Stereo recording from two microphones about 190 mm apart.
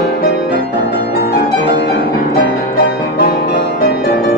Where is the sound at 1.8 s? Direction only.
65° left (ahead or behind).